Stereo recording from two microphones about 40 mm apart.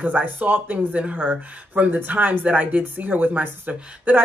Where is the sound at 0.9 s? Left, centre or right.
Right.